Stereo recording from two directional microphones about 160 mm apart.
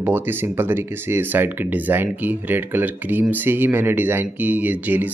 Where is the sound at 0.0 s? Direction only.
15° right (ahead or behind).